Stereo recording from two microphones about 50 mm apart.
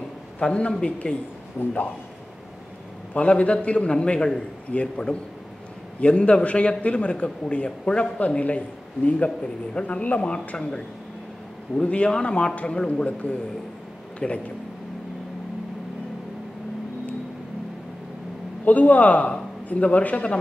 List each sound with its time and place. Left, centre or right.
0.4 s a man's voice: left
3.2 s a man's voice: left
18.7 s a man's voice: left